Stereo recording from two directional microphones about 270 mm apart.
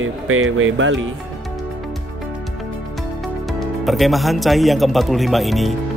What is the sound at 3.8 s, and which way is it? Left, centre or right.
Speech, centre.